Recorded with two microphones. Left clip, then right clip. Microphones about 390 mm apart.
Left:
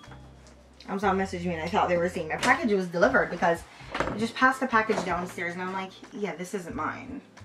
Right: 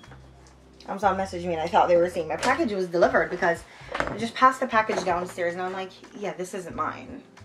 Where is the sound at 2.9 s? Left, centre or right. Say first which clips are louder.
Right 3 dB; left.